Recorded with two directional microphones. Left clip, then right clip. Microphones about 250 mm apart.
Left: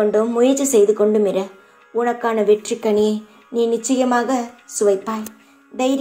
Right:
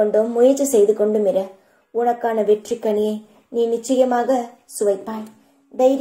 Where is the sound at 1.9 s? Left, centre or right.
Centre.